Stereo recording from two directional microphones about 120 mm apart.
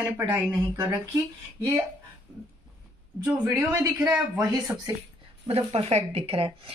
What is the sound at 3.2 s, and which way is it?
Speech, 25° right (ahead or behind).